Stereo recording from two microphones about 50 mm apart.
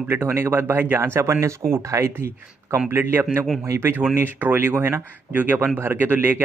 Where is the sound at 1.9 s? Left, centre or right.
Right.